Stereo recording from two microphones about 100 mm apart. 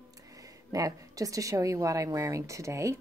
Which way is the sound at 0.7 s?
35° right (ahead or behind).